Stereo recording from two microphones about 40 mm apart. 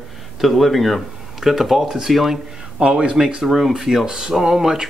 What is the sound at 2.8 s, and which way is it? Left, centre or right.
Speech, right.